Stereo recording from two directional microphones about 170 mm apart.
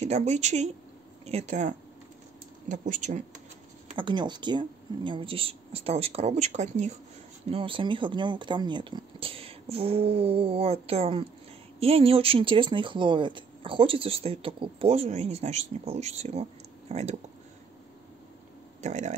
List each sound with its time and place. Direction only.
0.0 s speech: 40° right (ahead or behind)
3.9 s speech: 30° right (ahead or behind)
18.8 s speech: 45° right (ahead or behind)